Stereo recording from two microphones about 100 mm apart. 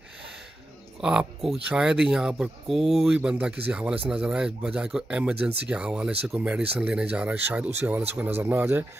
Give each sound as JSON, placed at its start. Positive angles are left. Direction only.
{"t": 1.0, "sound": "speech", "side_deg": -5}